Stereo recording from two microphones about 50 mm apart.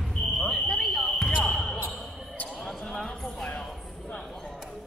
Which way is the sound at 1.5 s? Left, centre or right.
Centre.